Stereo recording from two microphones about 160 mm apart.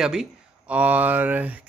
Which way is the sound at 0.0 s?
5° right (ahead or behind).